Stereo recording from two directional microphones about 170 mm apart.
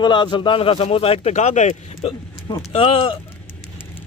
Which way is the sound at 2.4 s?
25° left (ahead or behind).